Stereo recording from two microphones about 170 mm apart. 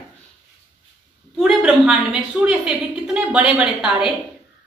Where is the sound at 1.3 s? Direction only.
5° right (ahead or behind).